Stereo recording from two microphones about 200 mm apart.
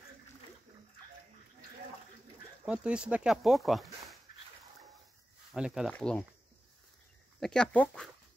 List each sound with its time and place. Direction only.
2.6 s speech: 5° right (ahead or behind)
5.5 s speech: 5° right (ahead or behind)
7.3 s speech: 5° left (ahead or behind)